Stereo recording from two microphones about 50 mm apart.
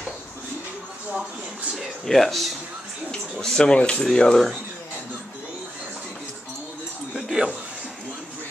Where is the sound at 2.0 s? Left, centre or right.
Centre.